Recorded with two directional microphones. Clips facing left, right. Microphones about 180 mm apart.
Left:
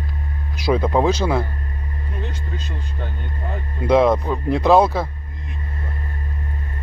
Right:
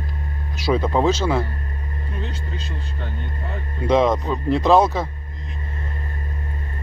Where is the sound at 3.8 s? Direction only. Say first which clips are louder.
Left 2 dB; 10° left (ahead or behind).